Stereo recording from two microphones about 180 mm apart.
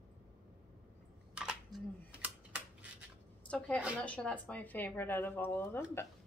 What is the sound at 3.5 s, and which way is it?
Speech, 5° left (ahead or behind).